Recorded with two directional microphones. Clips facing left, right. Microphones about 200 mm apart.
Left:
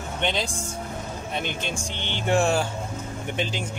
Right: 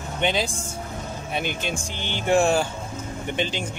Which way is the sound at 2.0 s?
5° right (ahead or behind).